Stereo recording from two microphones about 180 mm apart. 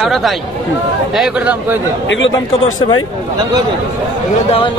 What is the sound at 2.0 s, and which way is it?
Speech, 90° left.